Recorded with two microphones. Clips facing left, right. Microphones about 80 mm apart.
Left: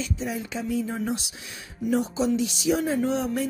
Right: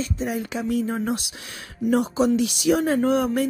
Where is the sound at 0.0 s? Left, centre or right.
Right.